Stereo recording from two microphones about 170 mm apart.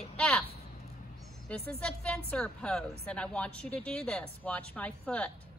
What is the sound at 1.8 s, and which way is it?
A woman's voice, 5° left (ahead or behind).